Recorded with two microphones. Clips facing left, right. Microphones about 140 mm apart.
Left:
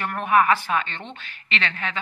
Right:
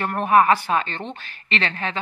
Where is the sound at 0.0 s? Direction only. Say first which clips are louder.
Right 3 dB; 35° right (ahead or behind).